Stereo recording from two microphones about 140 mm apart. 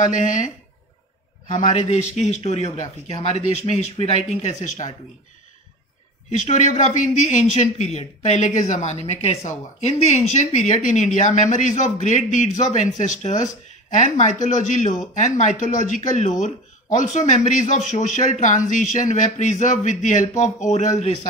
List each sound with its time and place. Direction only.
0.0 s speech: 65° left (ahead or behind)
1.5 s speech: 55° left (ahead or behind)
6.3 s speech: 55° left (ahead or behind)